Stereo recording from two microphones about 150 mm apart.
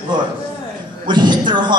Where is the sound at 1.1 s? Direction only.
30° right (ahead or behind).